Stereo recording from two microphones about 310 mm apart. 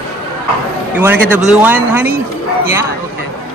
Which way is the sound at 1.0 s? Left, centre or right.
Centre.